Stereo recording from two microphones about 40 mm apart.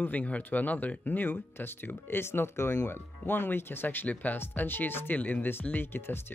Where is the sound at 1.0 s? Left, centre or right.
Left.